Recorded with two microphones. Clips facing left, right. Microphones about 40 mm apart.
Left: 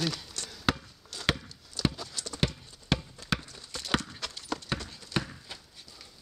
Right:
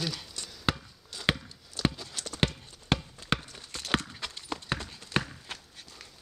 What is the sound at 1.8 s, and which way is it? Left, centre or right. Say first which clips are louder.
Clip-clop: right 1 dB; right.